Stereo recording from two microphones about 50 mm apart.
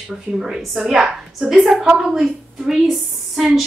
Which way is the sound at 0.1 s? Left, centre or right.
Centre.